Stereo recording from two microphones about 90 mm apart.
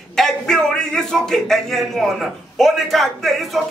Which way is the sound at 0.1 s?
5° left (ahead or behind).